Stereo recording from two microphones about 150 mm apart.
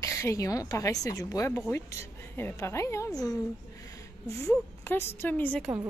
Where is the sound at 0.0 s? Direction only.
20° left (ahead or behind).